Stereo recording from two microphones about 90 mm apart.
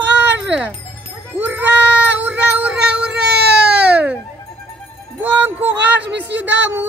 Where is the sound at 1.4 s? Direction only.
20° right (ahead or behind).